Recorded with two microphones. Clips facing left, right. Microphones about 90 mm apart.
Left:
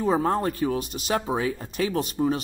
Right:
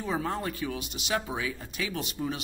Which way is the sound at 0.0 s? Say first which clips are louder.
Left 8 dB; 40° left (ahead or behind).